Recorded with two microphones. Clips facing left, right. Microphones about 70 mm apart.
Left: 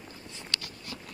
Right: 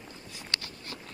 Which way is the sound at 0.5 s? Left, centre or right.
Right.